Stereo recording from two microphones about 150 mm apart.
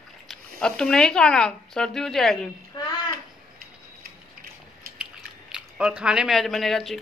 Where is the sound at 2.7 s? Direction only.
25° left (ahead or behind).